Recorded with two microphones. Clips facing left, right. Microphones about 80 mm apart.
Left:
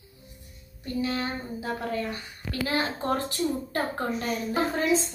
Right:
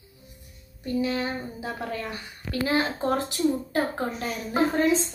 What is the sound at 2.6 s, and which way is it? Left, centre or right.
Speech, centre.